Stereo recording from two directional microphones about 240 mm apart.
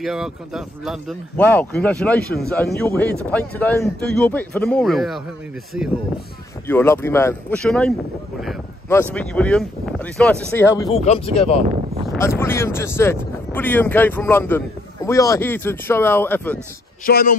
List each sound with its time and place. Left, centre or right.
0.0 s speech: centre
6.7 s speech: centre
9.1 s speech: centre
10.9 s speech: left
12.2 s speech: centre
17.0 s speech: left